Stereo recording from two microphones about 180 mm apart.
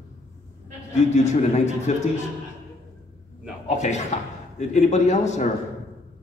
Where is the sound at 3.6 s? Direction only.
40° left (ahead or behind).